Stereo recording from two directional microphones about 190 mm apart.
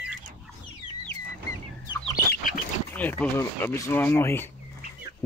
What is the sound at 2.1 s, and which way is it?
Chicken, 45° left (ahead or behind).